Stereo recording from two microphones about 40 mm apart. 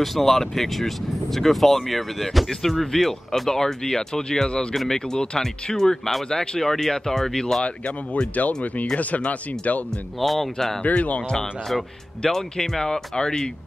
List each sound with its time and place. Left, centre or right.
0.0 s speech: centre
7.6 s speech: left
10.2 s speech: centre
10.8 s speech: left
12.2 s speech: centre